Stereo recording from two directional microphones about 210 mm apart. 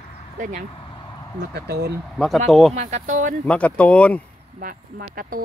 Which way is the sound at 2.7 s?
30° right (ahead or behind).